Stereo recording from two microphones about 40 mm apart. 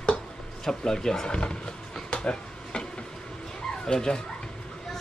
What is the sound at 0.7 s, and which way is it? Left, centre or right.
Speech, centre.